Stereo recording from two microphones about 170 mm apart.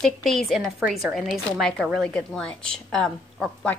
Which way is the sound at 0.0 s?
Centre (ahead or behind).